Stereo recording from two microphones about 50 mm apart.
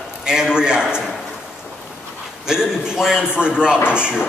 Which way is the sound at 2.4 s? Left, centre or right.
Centre.